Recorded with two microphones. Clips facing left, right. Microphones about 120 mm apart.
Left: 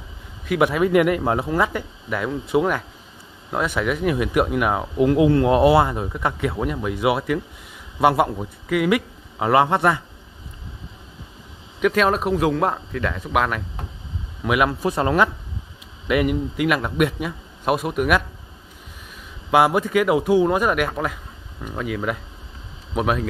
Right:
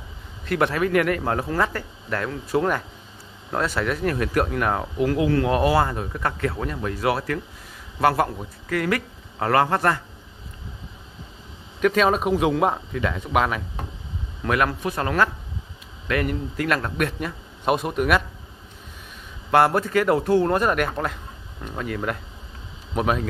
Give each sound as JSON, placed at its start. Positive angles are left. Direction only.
{"t": 0.5, "sound": "a man's voice", "side_deg": 10}
{"t": 11.8, "sound": "speech", "side_deg": 0}
{"t": 14.4, "sound": "speech", "side_deg": 10}
{"t": 14.7, "sound": "a man's voice", "side_deg": 25}
{"t": 16.1, "sound": "speech", "side_deg": 10}
{"t": 19.5, "sound": "speech", "side_deg": 10}